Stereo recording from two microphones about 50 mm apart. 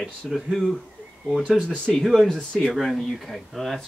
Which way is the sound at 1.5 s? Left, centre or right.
Centre.